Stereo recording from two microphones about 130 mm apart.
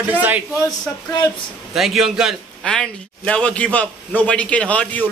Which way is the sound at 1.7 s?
Centre (ahead or behind).